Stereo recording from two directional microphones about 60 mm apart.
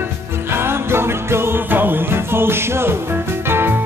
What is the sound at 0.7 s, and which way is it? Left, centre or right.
Music, right.